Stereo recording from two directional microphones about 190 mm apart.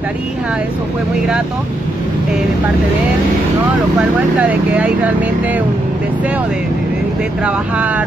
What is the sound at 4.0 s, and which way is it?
Speech, 5° right (ahead or behind).